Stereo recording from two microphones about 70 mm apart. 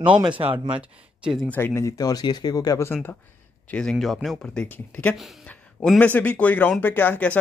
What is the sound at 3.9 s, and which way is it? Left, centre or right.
Speech, centre.